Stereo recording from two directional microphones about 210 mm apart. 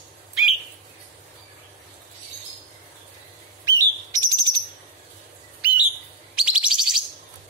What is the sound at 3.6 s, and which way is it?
Bird, 15° right (ahead or behind).